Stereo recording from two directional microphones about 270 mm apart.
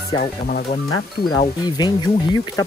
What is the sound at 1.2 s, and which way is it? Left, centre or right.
Speech, centre.